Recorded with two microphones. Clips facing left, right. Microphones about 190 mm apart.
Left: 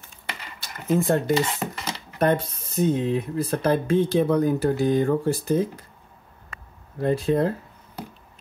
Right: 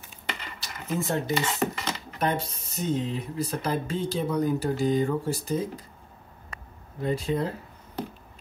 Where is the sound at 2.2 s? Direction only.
55° left (ahead or behind).